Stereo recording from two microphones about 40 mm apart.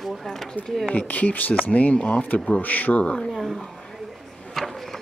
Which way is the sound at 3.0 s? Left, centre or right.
Left.